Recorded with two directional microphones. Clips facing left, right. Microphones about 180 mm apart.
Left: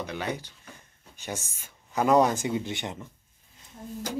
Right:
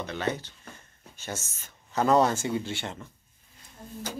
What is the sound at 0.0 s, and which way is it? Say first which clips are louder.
Speech: right 2 dB; 10° left (ahead or behind).